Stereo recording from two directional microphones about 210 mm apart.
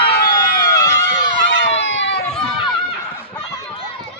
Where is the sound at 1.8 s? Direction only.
60° left (ahead or behind).